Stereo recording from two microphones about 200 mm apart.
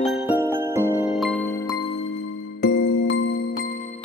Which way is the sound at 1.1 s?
Centre (ahead or behind).